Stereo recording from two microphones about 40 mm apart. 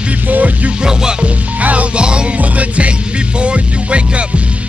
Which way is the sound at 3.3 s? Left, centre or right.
Right.